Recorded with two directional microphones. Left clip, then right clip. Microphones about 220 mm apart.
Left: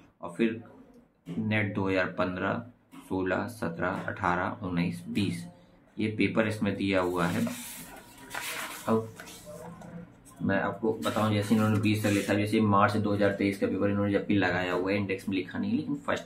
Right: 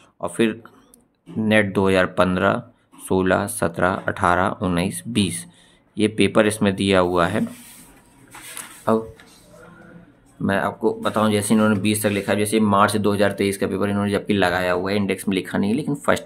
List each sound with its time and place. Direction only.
1.5 s speech: 55° right (ahead or behind)
8.9 s speech: 55° right (ahead or behind)
10.4 s speech: 55° right (ahead or behind)